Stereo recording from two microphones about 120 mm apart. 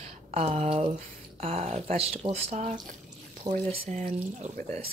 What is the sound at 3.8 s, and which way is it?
Speech, 90° right.